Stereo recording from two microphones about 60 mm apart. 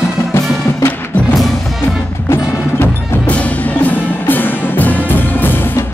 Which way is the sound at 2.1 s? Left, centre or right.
Left.